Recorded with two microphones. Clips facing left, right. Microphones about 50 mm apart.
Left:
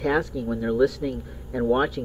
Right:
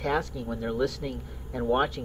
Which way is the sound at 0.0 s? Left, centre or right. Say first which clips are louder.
Left 5 dB; centre.